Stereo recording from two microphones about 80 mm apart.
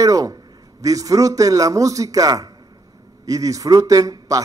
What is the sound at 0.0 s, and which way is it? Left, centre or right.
A man's voice, right.